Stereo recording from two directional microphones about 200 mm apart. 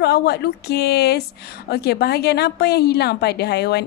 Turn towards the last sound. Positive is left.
turn(degrees=55)  # may be behind; listen again after turning